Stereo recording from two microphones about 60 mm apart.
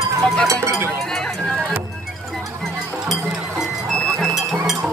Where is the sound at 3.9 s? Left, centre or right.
Centre.